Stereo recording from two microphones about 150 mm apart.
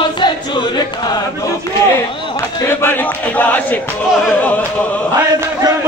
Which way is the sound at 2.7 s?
15° left (ahead or behind).